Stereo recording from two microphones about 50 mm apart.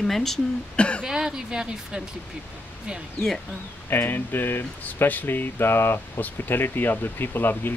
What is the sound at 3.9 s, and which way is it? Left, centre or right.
Speech, left.